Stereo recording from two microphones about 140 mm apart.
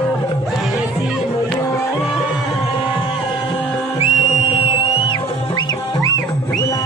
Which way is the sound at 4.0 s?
50° left (ahead or behind).